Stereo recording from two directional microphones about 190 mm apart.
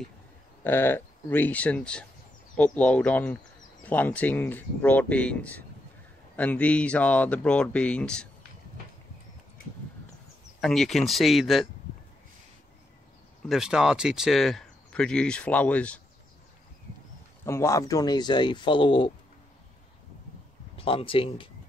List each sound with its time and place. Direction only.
0.7 s speech: 10° left (ahead or behind)
10.6 s speech: centre (ahead or behind)
13.5 s speech: 5° right (ahead or behind)
17.5 s speech: 15° left (ahead or behind)
20.7 s speech: 30° left (ahead or behind)